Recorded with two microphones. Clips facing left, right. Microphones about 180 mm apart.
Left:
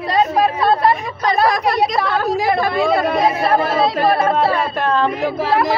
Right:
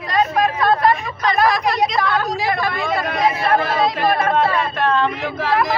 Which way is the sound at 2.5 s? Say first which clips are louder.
Left 5 dB; 30° left (ahead or behind).